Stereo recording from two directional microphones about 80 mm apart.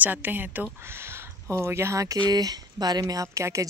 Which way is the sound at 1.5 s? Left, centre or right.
Right.